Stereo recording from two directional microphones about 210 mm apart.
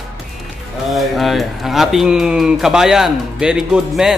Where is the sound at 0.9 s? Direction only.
Centre (ahead or behind).